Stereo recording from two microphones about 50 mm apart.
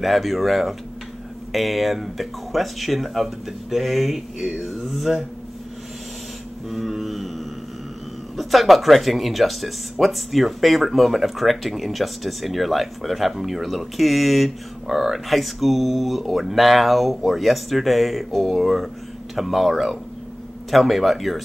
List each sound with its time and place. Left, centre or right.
0.0 s speech: centre
6.7 s a sound: centre
8.4 s speech: centre